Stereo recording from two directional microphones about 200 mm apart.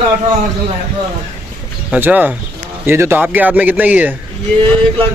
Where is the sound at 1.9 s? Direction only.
10° right (ahead or behind).